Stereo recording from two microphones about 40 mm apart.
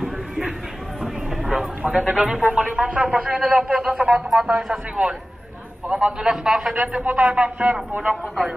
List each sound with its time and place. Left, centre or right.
1.4 s a sound: centre
2.0 s a man's voice: right
4.0 s a man's voice: centre
7.1 s a man's voice: right
8.1 s a man's voice: centre